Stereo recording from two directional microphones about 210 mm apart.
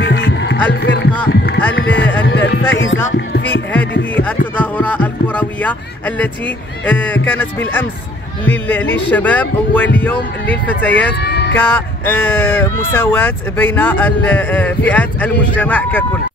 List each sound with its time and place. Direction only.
0.0 s music: 55° left (ahead or behind)
0.7 s speech: 55° left (ahead or behind)
1.3 s a sound: 50° left (ahead or behind)
2.0 s music: 10° left (ahead or behind)
2.2 s music: 50° left (ahead or behind)
2.7 s music: 65° left (ahead or behind)
4.1 s a sound: 5° left (ahead or behind)
8.5 s speech: 10° left (ahead or behind)
11.1 s a sound: 50° left (ahead or behind)
11.5 s speech: 10° left (ahead or behind)